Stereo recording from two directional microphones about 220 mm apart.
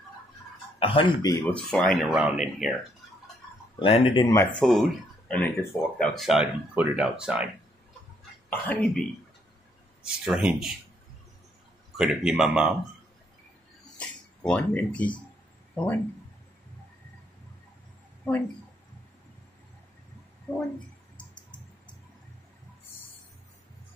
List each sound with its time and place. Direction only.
0.7 s speech: 25° left (ahead or behind)
1.5 s speech: 5° left (ahead or behind)
3.8 s speech: 25° left (ahead or behind)
4.6 s speech: centre (ahead or behind)
8.5 s speech: 10° left (ahead or behind)
10.0 s speech: 5° right (ahead or behind)
12.0 s speech: 5° right (ahead or behind)
13.9 s speech: 5° left (ahead or behind)
21.2 s a sound: 5° left (ahead or behind)